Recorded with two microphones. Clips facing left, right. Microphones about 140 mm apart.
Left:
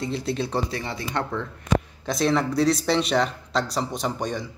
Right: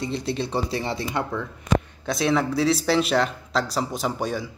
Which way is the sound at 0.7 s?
25° right (ahead or behind).